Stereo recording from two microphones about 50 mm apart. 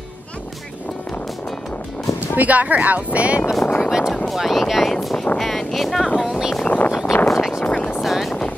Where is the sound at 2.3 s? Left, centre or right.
Right.